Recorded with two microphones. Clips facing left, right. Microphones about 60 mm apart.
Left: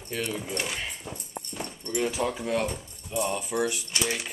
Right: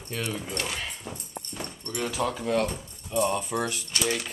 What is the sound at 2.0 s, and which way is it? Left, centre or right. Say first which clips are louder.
Speech: right 2 dB; centre.